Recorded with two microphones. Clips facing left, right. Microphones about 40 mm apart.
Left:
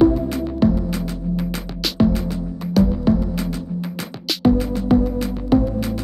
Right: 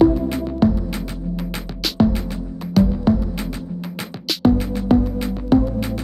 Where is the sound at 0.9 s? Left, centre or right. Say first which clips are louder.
Left 3 dB; centre.